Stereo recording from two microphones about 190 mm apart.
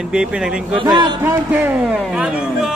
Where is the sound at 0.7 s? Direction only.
25° right (ahead or behind).